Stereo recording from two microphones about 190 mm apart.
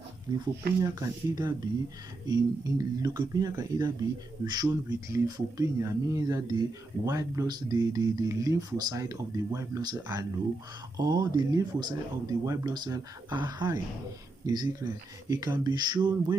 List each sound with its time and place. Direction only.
0.3 s speech: 20° right (ahead or behind)